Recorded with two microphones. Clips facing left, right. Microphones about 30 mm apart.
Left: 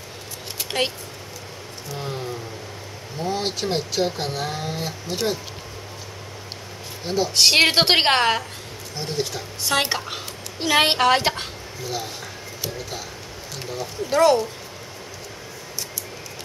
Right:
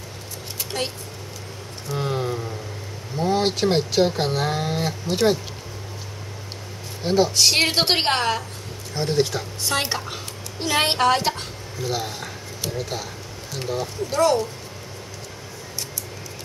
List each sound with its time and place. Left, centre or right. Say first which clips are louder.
0.7 s speech: left 4 dB; left
1.9 s a sound: right 5 dB; centre
3.2 s speech: right 5 dB; centre
7.1 s speech: right 4 dB; centre
7.3 s a woman's voice: left 3 dB; left
9.1 s speech: right 5 dB; centre
9.7 s a woman's voice: left 3 dB; centre
11.8 s speech: right 3 dB; centre
12.6 s a sound: right 3 dB; centre
14.1 s speech: left 3 dB; centre